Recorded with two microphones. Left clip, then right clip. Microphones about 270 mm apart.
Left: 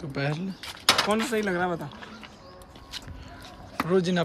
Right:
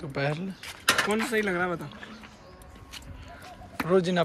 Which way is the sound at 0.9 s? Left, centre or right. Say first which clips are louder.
Left 2 dB; left.